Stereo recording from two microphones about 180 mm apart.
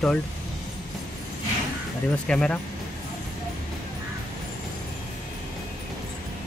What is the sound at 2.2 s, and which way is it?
Speech, 5° left (ahead or behind).